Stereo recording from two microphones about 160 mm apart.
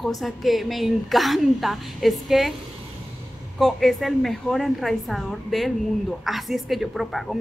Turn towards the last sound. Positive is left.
turn(degrees=0)  # may be behind; listen again after turning